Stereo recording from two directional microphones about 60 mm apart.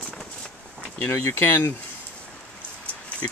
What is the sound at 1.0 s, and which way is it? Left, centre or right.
Speech, left.